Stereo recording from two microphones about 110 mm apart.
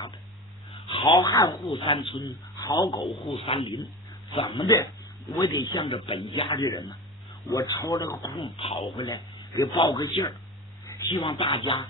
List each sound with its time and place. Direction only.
1.1 s speech: 35° left (ahead or behind)
1.7 s speech: 45° left (ahead or behind); by 3.1 s 30° left (ahead or behind)
3.3 s speech: 55° left (ahead or behind)
4.6 s speech: 25° left (ahead or behind)
5.4 s speech: 40° left (ahead or behind)
8.4 s speech: 55° left (ahead or behind)
8.9 s speech: 35° left (ahead or behind)
10.9 s a sound: 30° left (ahead or behind)
11.2 s speech: 45° left (ahead or behind)